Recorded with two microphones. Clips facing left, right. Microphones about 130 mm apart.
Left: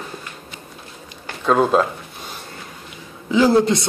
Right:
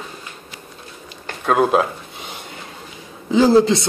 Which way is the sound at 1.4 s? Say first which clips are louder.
Even; 5° right (ahead or behind).